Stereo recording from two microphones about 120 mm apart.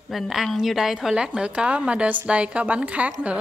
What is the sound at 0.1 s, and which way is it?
A woman's voice, centre (ahead or behind).